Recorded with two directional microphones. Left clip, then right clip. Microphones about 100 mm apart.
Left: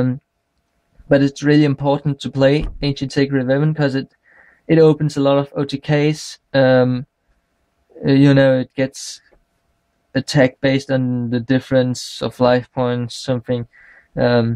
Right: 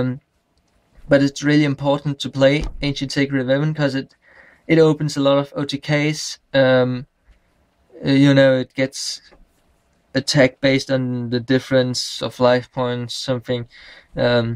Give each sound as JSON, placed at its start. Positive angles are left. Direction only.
{"t": 1.0, "sound": "speech", "side_deg": 30}